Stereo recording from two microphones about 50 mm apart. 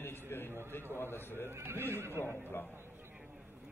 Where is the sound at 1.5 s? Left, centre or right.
Right.